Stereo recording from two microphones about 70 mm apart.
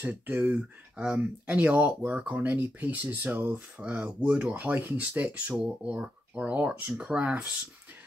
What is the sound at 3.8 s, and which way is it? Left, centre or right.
Speech, centre.